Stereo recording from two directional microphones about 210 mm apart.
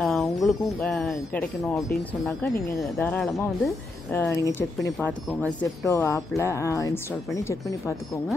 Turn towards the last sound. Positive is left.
turn(degrees=15)  # may be behind; listen again after turning